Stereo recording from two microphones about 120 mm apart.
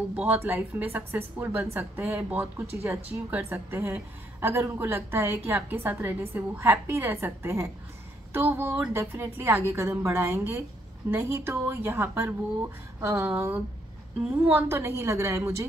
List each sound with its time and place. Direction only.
0.1 s a woman's voice: 10° right (ahead or behind)